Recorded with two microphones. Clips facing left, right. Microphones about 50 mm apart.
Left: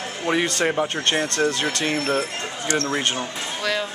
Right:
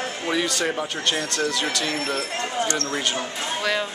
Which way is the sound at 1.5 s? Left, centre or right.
Left.